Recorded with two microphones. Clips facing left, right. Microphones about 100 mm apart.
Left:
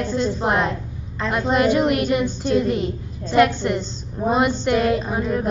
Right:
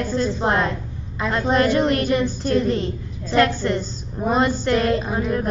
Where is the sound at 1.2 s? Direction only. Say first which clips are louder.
Even; 5° right (ahead or behind).